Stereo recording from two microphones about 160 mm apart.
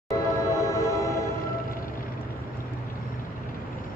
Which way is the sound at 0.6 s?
20° left (ahead or behind).